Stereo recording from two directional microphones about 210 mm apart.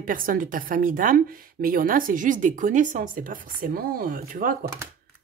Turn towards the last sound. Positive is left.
turn(degrees=-40)  # may be behind; listen again after turning